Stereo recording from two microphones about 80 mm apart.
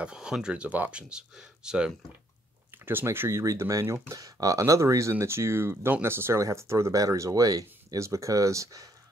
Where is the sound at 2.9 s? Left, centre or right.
Right.